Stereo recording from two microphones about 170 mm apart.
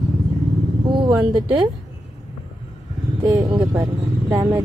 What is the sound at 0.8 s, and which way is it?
Speech, 25° right (ahead or behind).